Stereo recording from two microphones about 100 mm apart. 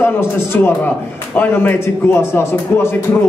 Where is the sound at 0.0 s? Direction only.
20° left (ahead or behind).